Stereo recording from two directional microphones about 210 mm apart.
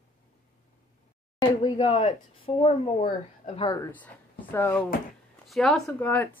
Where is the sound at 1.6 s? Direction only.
25° left (ahead or behind).